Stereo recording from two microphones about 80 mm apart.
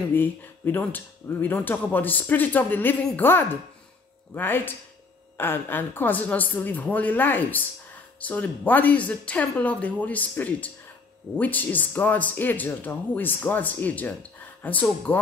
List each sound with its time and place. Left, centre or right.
0.1 s a woman's voice: left